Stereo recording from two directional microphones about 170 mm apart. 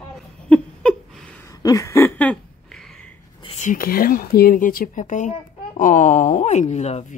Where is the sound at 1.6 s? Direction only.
20° left (ahead or behind).